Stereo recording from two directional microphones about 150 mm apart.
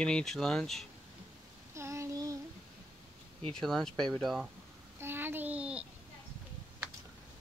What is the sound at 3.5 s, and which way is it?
Speech, 5° left (ahead or behind).